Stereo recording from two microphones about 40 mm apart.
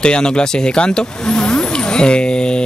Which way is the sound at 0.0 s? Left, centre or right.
Left.